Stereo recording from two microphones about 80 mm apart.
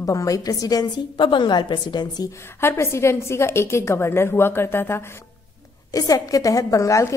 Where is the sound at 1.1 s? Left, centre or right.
Left.